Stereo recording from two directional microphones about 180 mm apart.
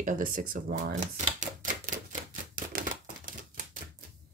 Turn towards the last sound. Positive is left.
turn(degrees=-50)  # may be behind; listen again after turning